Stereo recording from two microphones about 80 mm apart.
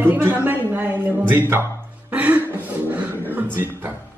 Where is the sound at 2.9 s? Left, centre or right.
Right.